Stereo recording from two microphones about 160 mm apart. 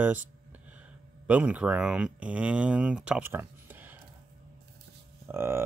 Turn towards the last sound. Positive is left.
turn(degrees=-15)  # may be behind; listen again after turning